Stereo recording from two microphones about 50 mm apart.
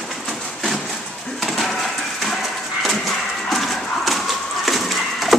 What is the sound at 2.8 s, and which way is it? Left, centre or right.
Horse, centre.